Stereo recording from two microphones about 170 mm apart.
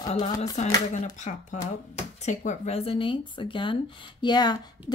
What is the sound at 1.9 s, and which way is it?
Speech, 45° left (ahead or behind).